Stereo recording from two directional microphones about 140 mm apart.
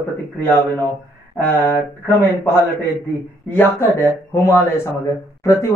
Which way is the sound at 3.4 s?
15° left (ahead or behind).